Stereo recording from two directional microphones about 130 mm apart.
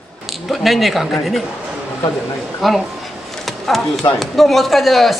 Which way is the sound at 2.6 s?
Centre (ahead or behind).